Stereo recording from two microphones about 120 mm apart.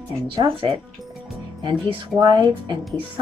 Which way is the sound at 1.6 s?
40° right (ahead or behind).